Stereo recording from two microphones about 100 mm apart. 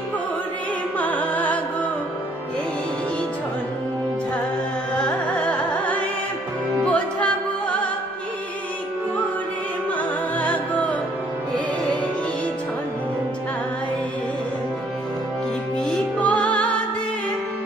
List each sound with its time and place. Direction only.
0.9 s music: 15° left (ahead or behind)
4.9 s carnatic music: 10° left (ahead or behind)
6.8 s music: 15° left (ahead or behind)
10.3 s music: 15° left (ahead or behind)
15.8 s music: 10° left (ahead or behind)